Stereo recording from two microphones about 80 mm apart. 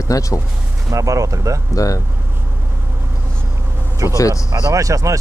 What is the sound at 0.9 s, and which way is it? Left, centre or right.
Speech, right.